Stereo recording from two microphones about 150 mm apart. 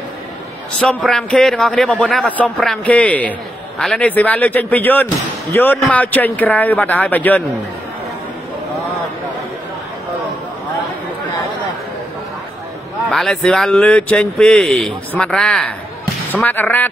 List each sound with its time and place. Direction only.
0.7 s a man's voice: 5° left (ahead or behind)
13.1 s a man's voice: centre (ahead or behind)